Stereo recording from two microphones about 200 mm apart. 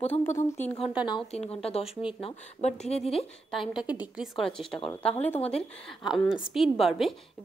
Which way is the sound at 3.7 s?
5° right (ahead or behind).